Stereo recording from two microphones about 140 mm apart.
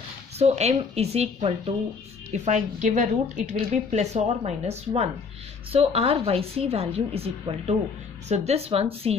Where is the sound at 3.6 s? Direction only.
50° right (ahead or behind).